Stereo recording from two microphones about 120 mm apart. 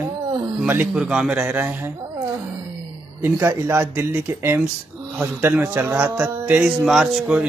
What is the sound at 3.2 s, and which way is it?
A man's voice, 20° right (ahead or behind).